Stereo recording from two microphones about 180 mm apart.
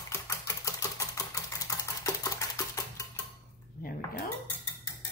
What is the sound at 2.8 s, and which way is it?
Music, 20° left (ahead or behind).